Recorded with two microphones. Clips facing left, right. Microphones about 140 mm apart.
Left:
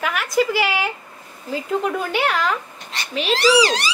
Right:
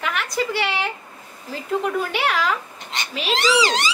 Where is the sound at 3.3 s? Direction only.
20° right (ahead or behind).